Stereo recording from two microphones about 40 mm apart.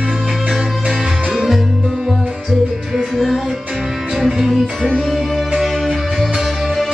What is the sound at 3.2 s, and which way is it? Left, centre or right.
Music, centre.